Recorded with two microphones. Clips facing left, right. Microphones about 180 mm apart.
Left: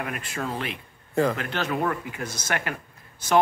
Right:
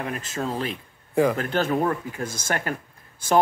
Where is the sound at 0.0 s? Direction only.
30° right (ahead or behind).